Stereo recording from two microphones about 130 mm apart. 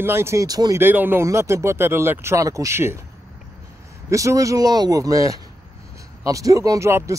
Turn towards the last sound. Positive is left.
turn(degrees=-20)  # may be behind; listen again after turning